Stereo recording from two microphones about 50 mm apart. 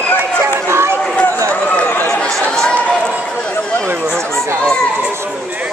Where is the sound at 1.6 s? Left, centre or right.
Left.